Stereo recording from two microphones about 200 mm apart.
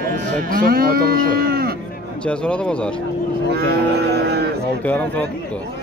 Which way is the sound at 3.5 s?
55° right (ahead or behind).